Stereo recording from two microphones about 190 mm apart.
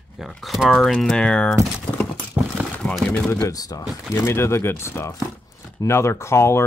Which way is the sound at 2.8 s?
5° left (ahead or behind).